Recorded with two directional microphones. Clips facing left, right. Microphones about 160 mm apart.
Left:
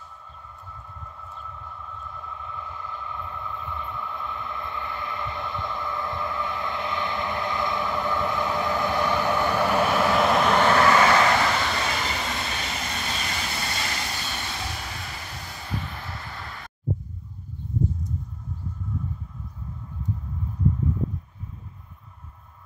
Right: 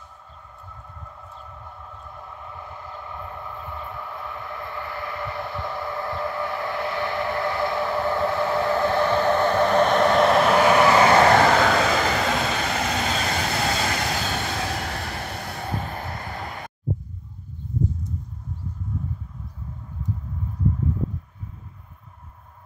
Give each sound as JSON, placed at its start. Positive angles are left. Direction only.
{"t": 2.6, "sound": "train", "side_deg": -25}
{"t": 3.7, "sound": "train", "side_deg": 20}
{"t": 10.9, "sound": "vehicle", "side_deg": -35}
{"t": 11.3, "sound": "vehicle", "side_deg": -85}